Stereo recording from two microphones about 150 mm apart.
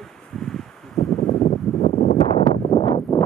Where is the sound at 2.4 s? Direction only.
40° left (ahead or behind).